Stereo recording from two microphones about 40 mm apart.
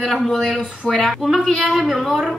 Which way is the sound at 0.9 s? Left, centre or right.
Left.